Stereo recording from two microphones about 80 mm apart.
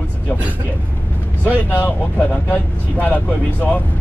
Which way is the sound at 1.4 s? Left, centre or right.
Left.